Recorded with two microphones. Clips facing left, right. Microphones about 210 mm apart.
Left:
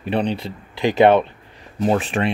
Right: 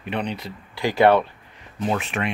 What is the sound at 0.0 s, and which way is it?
Speech, 30° left (ahead or behind).